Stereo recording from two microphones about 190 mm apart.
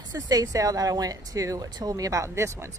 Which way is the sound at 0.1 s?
20° right (ahead or behind).